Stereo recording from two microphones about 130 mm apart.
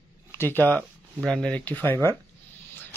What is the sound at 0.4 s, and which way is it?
Speech, 15° left (ahead or behind).